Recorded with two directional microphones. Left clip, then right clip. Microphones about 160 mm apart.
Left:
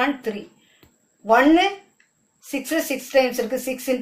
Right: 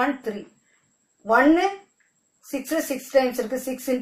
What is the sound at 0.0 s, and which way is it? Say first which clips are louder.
Speech: left 2 dB; 5° right (ahead or behind).